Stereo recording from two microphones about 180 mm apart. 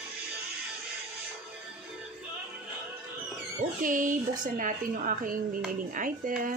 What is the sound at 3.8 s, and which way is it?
A woman's voice, 45° right (ahead or behind).